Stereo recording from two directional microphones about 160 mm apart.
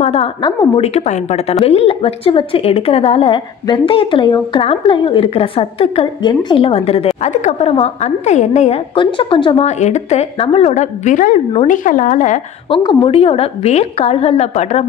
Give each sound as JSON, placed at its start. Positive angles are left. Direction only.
{"t": 0.0, "sound": "a woman's voice", "side_deg": 40}
{"t": 0.4, "sound": "a woman's voice", "side_deg": 25}
{"t": 0.8, "sound": "a woman's voice", "side_deg": 45}
{"t": 8.9, "sound": "a woman's voice", "side_deg": 30}
{"t": 9.7, "sound": "a woman's voice", "side_deg": 45}
{"t": 12.6, "sound": "a woman's voice", "side_deg": 35}